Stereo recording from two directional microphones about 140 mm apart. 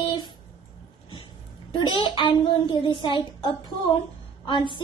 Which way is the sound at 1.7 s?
35° left (ahead or behind).